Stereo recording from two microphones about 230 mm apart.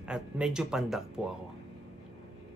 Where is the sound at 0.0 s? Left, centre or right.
Centre.